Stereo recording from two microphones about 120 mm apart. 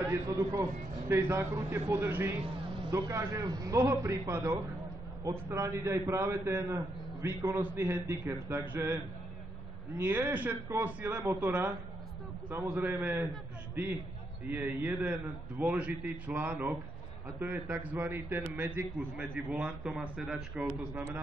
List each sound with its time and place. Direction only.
0.1 s a man's voice: 25° right (ahead or behind)
2.4 s vehicle: 45° right (ahead or behind)
2.9 s a man's voice: 25° right (ahead or behind); by 21.0 s 10° right (ahead or behind)